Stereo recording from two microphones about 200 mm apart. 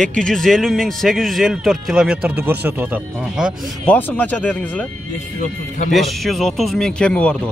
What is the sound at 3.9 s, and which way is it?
Speech, 10° left (ahead or behind).